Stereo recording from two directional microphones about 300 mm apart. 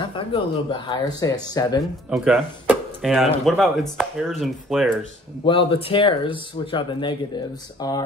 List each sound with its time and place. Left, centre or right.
0.1 s speech: centre
2.0 s speech: centre
5.4 s speech: centre